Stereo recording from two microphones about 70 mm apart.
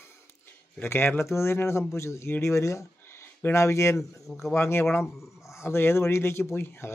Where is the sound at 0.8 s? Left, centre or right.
Left.